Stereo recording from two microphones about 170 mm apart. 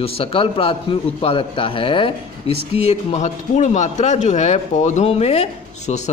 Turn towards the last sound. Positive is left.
turn(degrees=40)  # may be behind; listen again after turning